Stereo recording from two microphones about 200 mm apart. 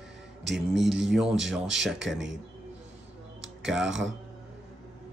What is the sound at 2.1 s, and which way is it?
Speech, 65° right (ahead or behind).